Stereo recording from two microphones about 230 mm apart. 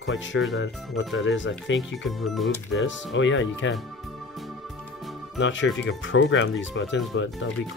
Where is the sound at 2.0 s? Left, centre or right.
Centre.